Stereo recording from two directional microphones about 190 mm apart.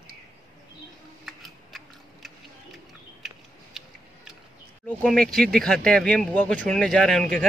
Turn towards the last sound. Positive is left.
turn(degrees=0)  # may be behind; listen again after turning